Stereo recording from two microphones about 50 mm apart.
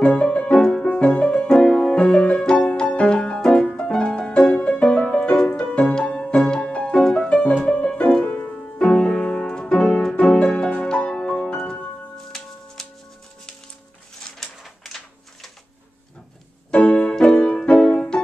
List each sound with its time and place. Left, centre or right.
0.0 s music: left
2.0 s music: left; by 7.2 s centre
7.4 s music: left
8.3 s music: left
8.7 s music: centre
16.7 s keyboard: left
17.4 s music: left